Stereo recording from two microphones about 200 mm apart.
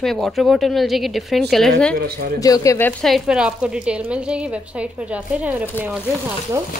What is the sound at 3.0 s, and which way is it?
A woman's voice, centre (ahead or behind).